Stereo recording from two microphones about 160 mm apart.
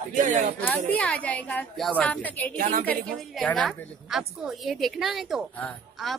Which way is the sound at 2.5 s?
60° right (ahead or behind).